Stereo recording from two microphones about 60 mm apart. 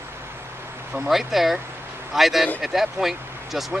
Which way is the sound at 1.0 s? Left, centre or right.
Centre.